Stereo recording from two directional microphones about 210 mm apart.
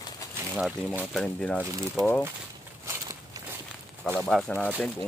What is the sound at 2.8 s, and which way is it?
Walk, 15° right (ahead or behind).